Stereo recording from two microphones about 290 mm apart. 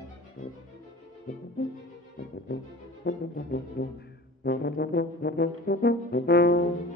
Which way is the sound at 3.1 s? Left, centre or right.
Left.